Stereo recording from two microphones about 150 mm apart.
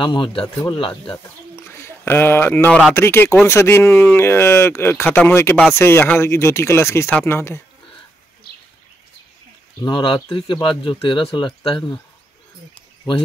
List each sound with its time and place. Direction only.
0.0 s speech: 35° left (ahead or behind)
1.1 s speech: 15° left (ahead or behind)
8.5 s bird: 90° left
9.8 s speech: 30° left (ahead or behind)